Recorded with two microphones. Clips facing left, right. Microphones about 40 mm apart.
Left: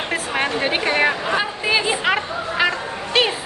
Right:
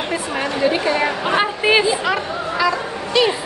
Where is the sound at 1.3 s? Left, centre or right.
Right.